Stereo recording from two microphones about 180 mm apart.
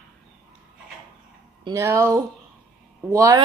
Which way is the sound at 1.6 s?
15° right (ahead or behind).